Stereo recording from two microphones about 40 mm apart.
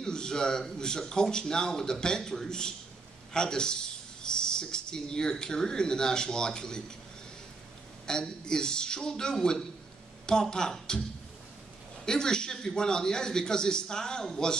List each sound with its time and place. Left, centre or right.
0.0 s a man's voice: centre
8.1 s a man's voice: centre
12.1 s a man's voice: centre